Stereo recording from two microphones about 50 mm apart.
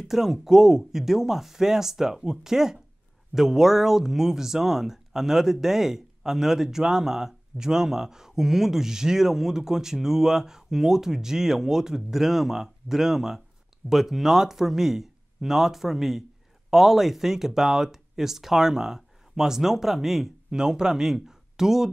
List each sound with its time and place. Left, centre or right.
0.1 s speech: centre